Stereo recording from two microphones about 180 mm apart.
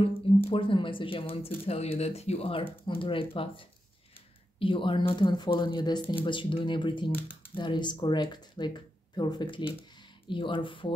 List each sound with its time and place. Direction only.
0.5 s speech: 30° left (ahead or behind)
7.2 s speech: 10° left (ahead or behind)
7.5 s speech: 25° left (ahead or behind)